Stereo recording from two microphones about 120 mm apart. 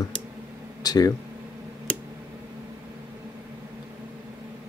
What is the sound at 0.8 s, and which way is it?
Speech, 35° left (ahead or behind).